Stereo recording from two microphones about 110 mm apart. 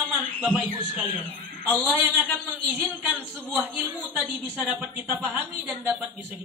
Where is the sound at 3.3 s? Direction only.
15° right (ahead or behind).